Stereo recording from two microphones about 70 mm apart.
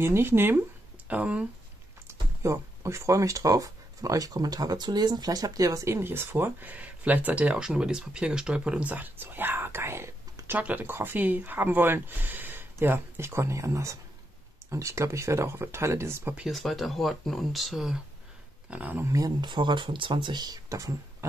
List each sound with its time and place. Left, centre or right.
0.0 s speech: right; by 1.5 s centre
2.0 s speech: right
7.5 s speech: centre; by 10.1 s right
10.6 s speech: right
16.4 s speech: centre
18.7 s speech: right
19.0 s speech: right
20.2 s speech: right
20.7 s speech: right